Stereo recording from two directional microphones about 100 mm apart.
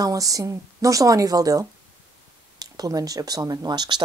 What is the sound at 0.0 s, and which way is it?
Speech, 35° right (ahead or behind).